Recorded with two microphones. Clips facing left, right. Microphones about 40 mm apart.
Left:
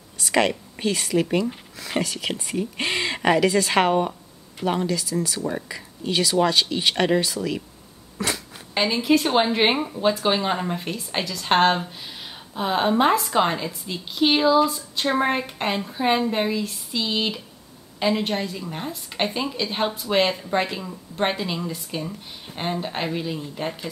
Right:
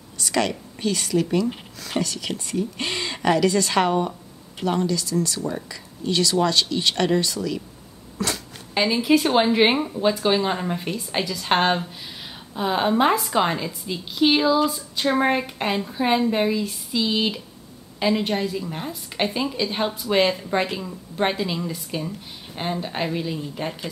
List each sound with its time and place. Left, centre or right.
0.2 s a woman's voice: centre
8.2 s a sound: centre
8.7 s a woman's voice: centre